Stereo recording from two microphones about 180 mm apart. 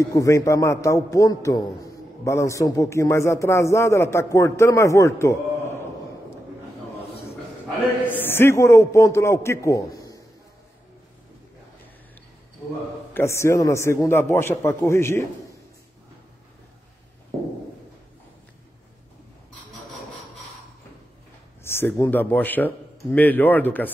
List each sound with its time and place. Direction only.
0.0 s speech: 15° left (ahead or behind)
8.1 s speech: 10° left (ahead or behind)
13.1 s speech: 15° left (ahead or behind)
21.6 s speech: 15° left (ahead or behind)